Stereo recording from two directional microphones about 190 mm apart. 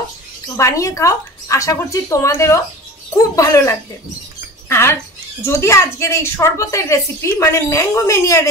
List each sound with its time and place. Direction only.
0.6 s a woman's voice: 15° left (ahead or behind)